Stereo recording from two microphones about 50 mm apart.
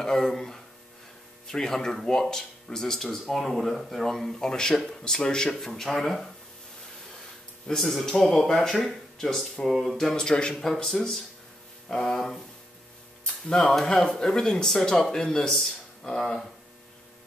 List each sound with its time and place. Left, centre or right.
0.0 s speech: centre
7.6 s speech: centre
10.1 s speech: centre
13.5 s speech: centre